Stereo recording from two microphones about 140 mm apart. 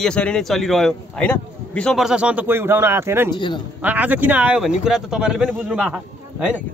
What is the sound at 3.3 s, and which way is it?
Speech, 35° left (ahead or behind).